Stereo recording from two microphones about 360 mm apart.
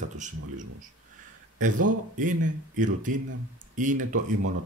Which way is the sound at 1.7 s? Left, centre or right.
Right.